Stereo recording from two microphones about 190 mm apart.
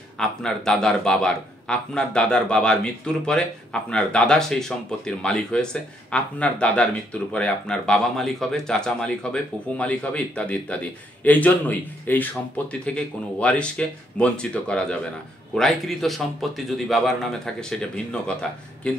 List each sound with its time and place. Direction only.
0.2 s a man's voice: 5° left (ahead or behind)